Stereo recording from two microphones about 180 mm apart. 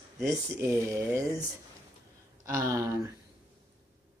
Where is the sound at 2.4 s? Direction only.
15° right (ahead or behind).